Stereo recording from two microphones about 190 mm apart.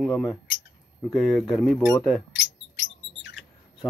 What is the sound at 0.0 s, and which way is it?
Speech, centre (ahead or behind).